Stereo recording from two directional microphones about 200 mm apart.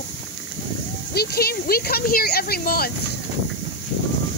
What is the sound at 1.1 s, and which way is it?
Speech, 50° left (ahead or behind).